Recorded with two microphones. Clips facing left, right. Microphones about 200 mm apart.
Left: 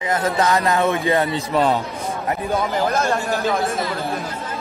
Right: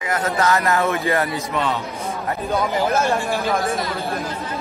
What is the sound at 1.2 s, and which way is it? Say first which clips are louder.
Speech: left 4 dB; 35° left (ahead or behind).